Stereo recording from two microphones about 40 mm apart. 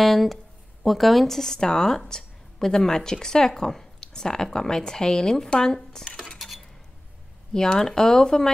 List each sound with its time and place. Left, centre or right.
0.0 s speech: centre
6.3 s dishes: centre
7.5 s speech: centre